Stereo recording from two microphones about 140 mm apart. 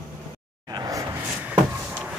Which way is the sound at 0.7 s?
25° right (ahead or behind).